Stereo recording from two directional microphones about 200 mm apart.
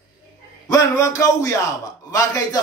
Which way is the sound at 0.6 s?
20° left (ahead or behind).